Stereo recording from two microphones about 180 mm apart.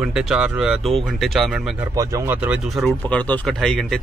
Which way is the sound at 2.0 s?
15° right (ahead or behind).